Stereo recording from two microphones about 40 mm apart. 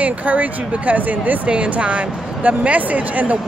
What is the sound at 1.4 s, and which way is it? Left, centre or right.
Speech, right.